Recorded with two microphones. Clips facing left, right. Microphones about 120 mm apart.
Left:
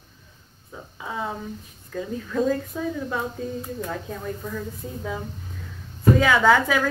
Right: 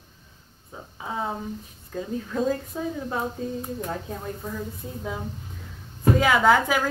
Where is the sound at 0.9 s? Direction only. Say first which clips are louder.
Right 1 dB; 25° right (ahead or behind).